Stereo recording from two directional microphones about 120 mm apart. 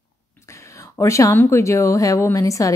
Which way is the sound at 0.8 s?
25° left (ahead or behind).